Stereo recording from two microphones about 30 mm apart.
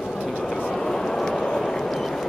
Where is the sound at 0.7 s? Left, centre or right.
Centre.